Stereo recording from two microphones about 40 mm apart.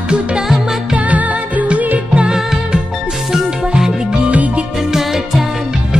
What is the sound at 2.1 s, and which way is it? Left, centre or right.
Music, right.